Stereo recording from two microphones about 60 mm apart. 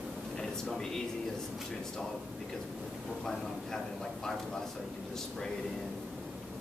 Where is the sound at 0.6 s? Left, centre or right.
Centre.